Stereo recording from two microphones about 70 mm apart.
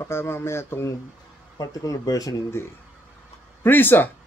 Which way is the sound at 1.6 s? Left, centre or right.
Left.